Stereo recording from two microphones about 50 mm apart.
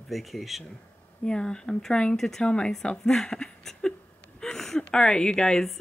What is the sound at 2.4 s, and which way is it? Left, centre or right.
Speech, centre.